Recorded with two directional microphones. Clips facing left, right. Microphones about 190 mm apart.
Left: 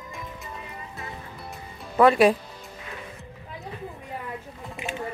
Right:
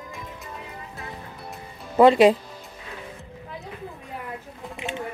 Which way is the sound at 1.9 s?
20° right (ahead or behind).